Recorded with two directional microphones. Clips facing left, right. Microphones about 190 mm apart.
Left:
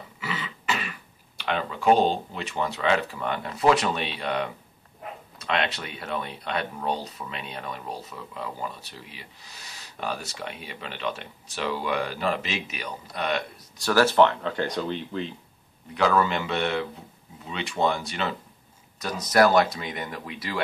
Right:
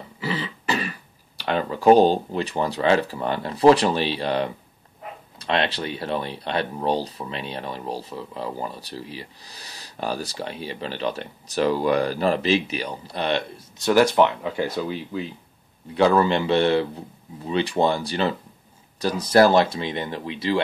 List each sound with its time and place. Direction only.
0.2 s throat clearing: 35° right (ahead or behind)
1.4 s speech: 40° right (ahead or behind); by 15.3 s 5° right (ahead or behind)
15.9 s speech: 30° right (ahead or behind)